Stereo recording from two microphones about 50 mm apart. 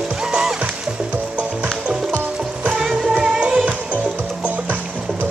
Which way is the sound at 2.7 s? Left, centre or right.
Centre.